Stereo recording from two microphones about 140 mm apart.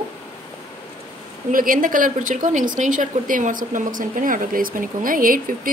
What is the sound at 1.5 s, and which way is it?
Speech, 75° right (ahead or behind).